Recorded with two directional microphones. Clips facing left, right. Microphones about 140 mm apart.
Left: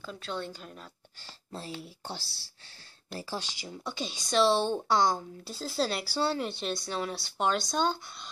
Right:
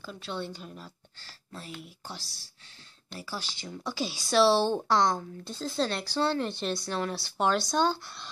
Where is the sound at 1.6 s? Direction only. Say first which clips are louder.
Left 2 dB; 30° left (ahead or behind); by 3.7 s 15° left (ahead or behind).